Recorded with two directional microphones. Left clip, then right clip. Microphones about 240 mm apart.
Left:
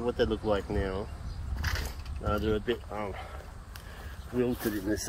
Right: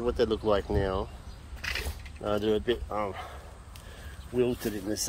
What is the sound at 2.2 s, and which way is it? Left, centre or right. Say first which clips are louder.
Speech: right 3 dB; right.